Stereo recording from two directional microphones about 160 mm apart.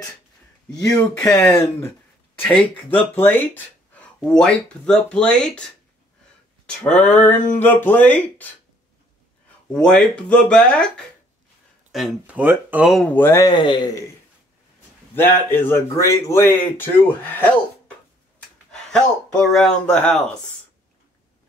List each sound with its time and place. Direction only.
0.9 s speech: 10° left (ahead or behind)
9.7 s speech: 5° left (ahead or behind)
13.1 s speech: 15° left (ahead or behind)
13.5 s a man's voice: 30° left (ahead or behind)
15.1 s speech: 15° left (ahead or behind)
18.7 s speech: 5° left (ahead or behind)